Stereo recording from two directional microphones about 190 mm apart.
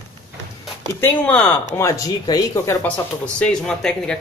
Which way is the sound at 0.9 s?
10° left (ahead or behind).